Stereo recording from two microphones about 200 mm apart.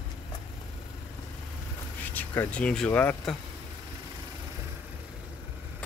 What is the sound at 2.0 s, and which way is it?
Speech, 10° left (ahead or behind).